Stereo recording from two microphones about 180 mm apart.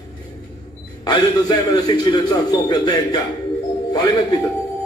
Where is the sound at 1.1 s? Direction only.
20° left (ahead or behind).